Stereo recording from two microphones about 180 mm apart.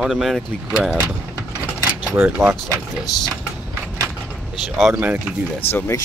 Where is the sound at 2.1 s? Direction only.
10° right (ahead or behind).